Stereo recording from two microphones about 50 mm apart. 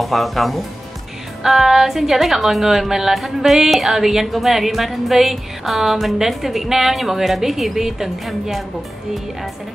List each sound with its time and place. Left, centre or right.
0.0 s a woman's voice: centre